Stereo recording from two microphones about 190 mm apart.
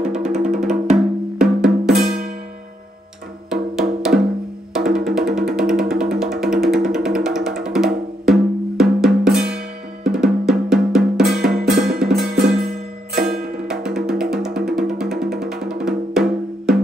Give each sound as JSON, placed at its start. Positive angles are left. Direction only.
{"t": 0.0, "sound": "music", "side_deg": -5}
{"t": 4.0, "sound": "music", "side_deg": -5}
{"t": 10.0, "sound": "drum", "side_deg": -5}
{"t": 11.4, "sound": "music", "side_deg": -5}
{"t": 13.1, "sound": "music", "side_deg": -55}
{"t": 13.7, "sound": "music", "side_deg": -5}